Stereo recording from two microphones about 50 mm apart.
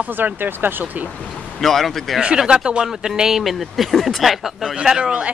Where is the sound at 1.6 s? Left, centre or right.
Centre.